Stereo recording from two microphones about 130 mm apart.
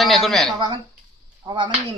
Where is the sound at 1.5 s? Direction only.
35° right (ahead or behind).